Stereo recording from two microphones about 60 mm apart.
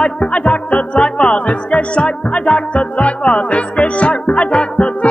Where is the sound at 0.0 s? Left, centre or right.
Centre.